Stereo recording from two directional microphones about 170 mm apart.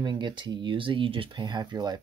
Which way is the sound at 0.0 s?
25° right (ahead or behind).